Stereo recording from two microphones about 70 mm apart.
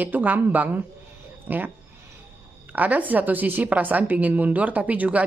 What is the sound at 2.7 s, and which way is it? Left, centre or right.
A woman's voice, right.